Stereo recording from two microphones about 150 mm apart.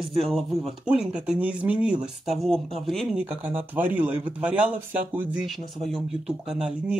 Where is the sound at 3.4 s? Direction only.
10° right (ahead or behind).